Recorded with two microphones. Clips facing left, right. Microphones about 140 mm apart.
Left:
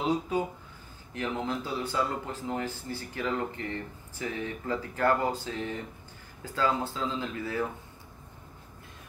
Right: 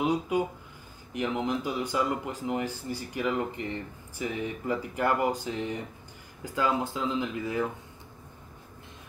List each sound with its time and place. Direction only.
0.0 s speech: 15° right (ahead or behind)